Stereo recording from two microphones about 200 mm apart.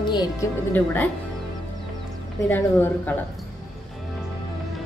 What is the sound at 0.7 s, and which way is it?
Speech, 10° left (ahead or behind).